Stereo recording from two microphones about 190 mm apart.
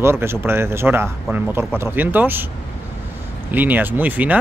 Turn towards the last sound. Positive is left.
turn(degrees=-10)  # may be behind; listen again after turning